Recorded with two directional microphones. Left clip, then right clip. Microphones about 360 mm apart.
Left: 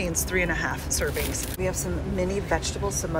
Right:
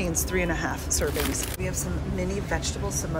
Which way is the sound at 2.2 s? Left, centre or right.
Centre.